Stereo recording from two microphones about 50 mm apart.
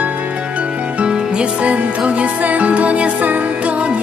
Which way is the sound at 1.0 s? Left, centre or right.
Right.